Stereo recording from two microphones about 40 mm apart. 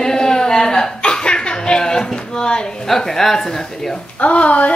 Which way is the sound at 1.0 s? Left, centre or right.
Left.